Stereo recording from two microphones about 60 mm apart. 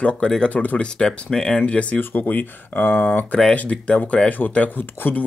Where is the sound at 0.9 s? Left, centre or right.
Centre; by 3.4 s left.